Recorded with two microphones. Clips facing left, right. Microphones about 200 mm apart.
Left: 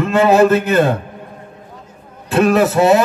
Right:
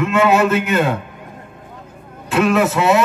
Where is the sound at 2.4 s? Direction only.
35° left (ahead or behind).